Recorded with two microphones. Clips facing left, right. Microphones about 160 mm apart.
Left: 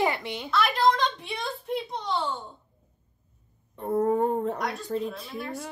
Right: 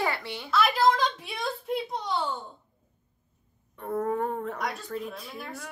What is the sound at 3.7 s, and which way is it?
Speech, 30° left (ahead or behind).